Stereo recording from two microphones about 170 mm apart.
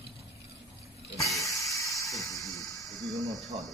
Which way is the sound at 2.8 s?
Centre (ahead or behind).